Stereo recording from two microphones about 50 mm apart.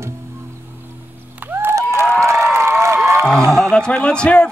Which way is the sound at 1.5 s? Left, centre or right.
Right.